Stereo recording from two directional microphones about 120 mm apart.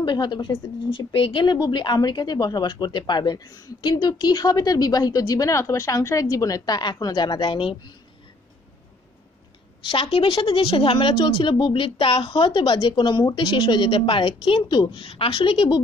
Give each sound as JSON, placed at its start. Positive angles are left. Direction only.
{"t": 0.0, "sound": "speech", "side_deg": 40}
{"t": 9.8, "sound": "a woman's voice", "side_deg": 50}